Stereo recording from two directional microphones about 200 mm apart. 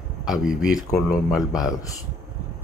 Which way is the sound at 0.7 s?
20° left (ahead or behind).